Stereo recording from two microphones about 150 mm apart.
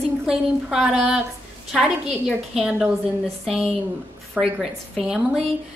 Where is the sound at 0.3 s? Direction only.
5° right (ahead or behind).